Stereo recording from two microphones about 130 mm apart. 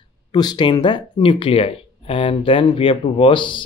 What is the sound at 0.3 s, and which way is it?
Speech, 35° left (ahead or behind).